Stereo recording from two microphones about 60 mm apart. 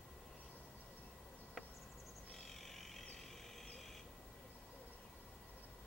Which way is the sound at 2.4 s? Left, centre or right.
Centre.